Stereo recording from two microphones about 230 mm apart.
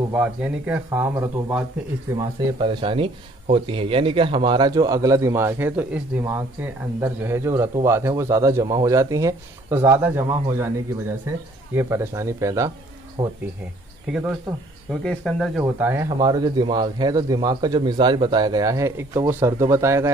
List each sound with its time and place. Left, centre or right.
0.1 s speech: centre
15.6 s speech: centre